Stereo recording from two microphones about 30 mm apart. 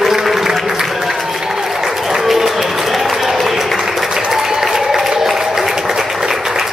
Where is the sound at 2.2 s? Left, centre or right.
Centre.